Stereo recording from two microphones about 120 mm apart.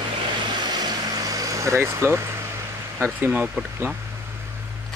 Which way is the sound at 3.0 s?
15° right (ahead or behind).